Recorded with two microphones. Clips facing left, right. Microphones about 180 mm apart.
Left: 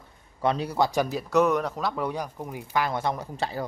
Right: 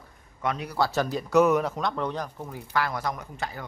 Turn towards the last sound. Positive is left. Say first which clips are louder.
# left 5 dB
turn(degrees=30)  # may be behind; listen again after turning